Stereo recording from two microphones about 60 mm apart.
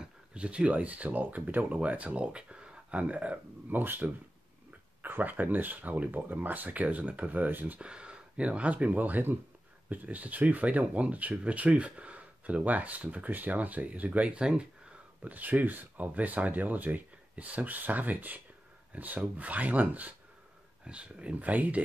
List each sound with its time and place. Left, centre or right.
0.0 s speech: centre
7.8 s speech: centre
15.2 s speech: right
20.8 s speech: centre